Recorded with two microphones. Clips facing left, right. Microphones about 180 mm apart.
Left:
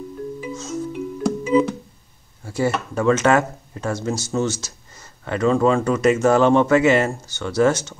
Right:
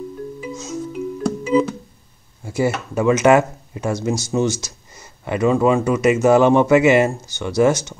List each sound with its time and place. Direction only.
1.2 s keyboard: centre (ahead or behind)
2.4 s speech: 10° right (ahead or behind)